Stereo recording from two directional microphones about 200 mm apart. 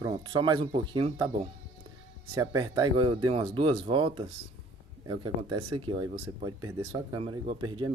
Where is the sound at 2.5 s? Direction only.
20° right (ahead or behind).